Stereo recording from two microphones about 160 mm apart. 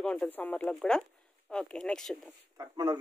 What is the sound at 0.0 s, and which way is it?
A woman's voice, 5° left (ahead or behind).